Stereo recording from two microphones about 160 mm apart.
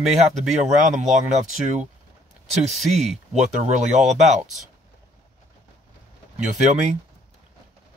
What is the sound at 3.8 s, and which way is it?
Speech, 50° right (ahead or behind).